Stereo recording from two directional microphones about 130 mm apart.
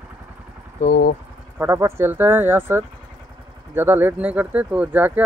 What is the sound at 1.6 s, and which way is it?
Speech, 20° right (ahead or behind).